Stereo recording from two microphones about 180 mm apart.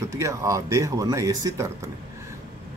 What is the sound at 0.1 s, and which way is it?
Speech, 15° right (ahead or behind).